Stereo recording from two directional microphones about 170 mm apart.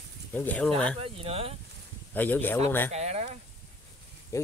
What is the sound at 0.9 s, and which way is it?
Speech, 35° right (ahead or behind).